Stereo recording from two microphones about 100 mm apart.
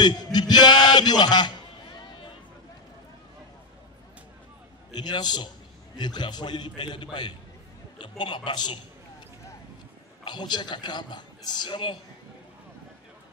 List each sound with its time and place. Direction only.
0.0 s a sound: 45° left (ahead or behind)
4.9 s a man's voice: 45° left (ahead or behind)
10.2 s a man's voice: 45° left (ahead or behind)